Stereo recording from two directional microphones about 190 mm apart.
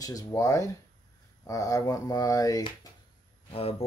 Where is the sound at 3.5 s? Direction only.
30° left (ahead or behind).